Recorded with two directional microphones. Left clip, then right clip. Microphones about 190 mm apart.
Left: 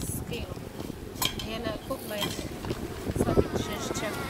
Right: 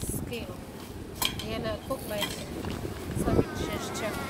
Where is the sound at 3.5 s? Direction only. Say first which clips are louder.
Left 2 dB; 55° right (ahead or behind).